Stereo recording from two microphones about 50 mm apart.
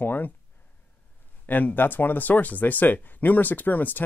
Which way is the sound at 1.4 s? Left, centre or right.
Left.